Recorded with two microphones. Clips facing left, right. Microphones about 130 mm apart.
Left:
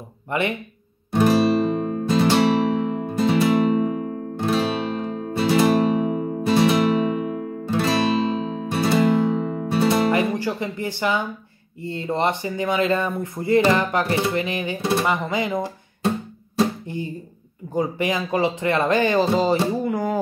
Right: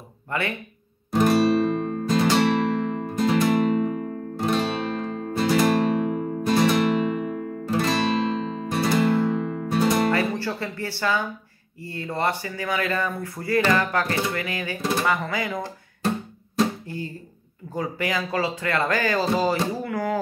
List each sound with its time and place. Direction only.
0.3 s speech: 20° left (ahead or behind)
1.2 s music: centre (ahead or behind)
7.8 s guitar: centre (ahead or behind)
8.9 s music: 15° left (ahead or behind)
9.5 s music: 5° left (ahead or behind)
10.1 s music: 15° left (ahead or behind)
11.8 s speech: 25° left (ahead or behind)